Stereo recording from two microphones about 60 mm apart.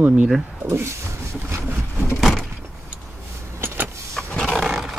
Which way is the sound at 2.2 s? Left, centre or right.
Centre.